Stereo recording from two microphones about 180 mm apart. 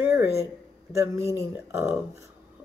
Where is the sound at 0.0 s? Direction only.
10° right (ahead or behind).